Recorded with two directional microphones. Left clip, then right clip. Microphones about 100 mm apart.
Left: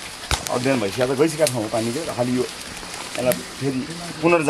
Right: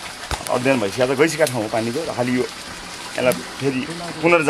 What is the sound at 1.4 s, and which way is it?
Speech, 20° left (ahead or behind).